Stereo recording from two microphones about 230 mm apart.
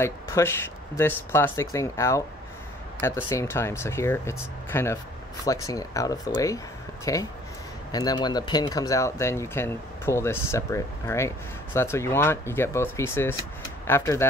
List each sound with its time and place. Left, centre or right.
0.0 s speech: centre